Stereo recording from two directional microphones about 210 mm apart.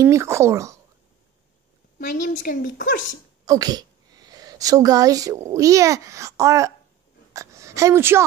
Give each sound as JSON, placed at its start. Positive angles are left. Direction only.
{"t": 0.0, "sound": "speech", "side_deg": -15}
{"t": 2.0, "sound": "a woman's voice", "side_deg": 40}
{"t": 3.4, "sound": "a sound", "side_deg": -20}
{"t": 5.5, "sound": "a woman's voice", "side_deg": -15}